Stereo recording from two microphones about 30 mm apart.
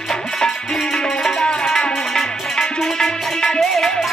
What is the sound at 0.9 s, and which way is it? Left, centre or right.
Music, left.